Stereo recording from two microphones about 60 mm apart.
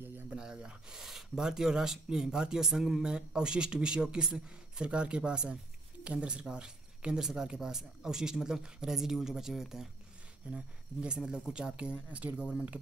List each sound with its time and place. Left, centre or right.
0.3 s speech: centre
10.5 s speech: centre